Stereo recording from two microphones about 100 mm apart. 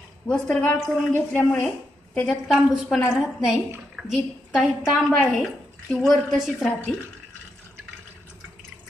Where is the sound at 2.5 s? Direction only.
5° right (ahead or behind).